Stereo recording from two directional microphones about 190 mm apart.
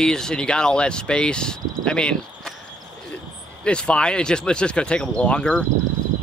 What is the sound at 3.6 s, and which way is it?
Speech, 5° left (ahead or behind).